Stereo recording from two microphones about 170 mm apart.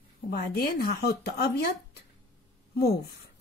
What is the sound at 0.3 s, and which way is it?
Speech, 65° left (ahead or behind).